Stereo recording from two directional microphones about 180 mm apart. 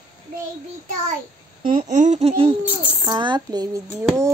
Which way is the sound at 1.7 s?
40° right (ahead or behind).